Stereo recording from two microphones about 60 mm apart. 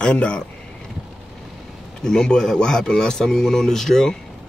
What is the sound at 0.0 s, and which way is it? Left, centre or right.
Speech, centre.